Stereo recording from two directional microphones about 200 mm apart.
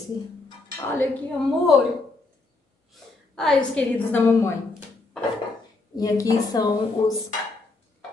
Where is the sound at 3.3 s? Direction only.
Centre (ahead or behind).